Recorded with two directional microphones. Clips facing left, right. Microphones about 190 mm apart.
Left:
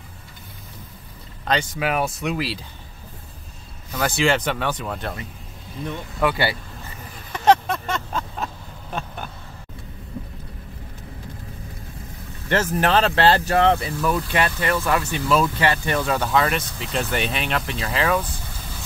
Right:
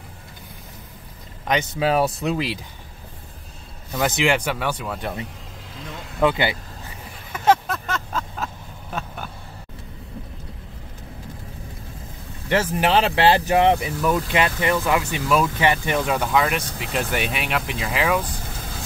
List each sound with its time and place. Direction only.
1.4 s speech: 20° right (ahead or behind)
3.9 s speech: 20° right (ahead or behind)
6.2 s speech: 20° right (ahead or behind)
7.3 s a sound: 5° right (ahead or behind)
12.4 s speech: 10° right (ahead or behind)